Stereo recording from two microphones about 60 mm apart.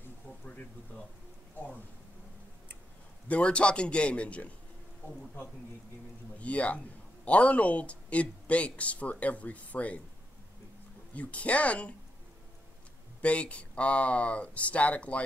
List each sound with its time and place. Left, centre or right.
0.5 s a sound: left
3.3 s speech: centre
6.3 s speech: left
11.1 s speech: left
13.2 s speech: left